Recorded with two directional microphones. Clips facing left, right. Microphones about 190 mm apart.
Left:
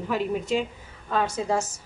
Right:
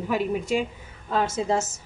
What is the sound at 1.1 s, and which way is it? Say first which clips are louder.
Speech: right 1 dB; 25° right (ahead or behind).